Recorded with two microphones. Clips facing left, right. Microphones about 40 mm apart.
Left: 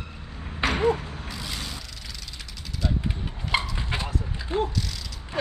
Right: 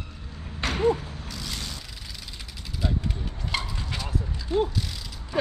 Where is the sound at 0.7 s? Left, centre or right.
Centre.